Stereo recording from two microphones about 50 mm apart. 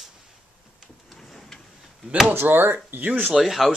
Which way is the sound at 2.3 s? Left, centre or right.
Right.